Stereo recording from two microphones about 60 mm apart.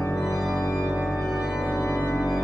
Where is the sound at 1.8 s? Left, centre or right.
Left.